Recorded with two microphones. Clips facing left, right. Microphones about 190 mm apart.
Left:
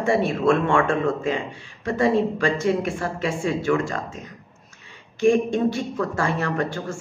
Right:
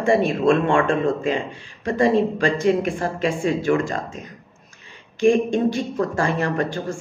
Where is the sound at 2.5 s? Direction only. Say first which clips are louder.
Right 3 dB; 15° right (ahead or behind).